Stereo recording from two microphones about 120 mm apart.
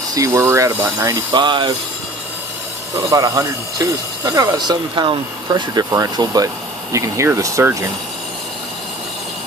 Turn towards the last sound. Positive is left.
turn(degrees=-25)  # may be behind; listen again after turning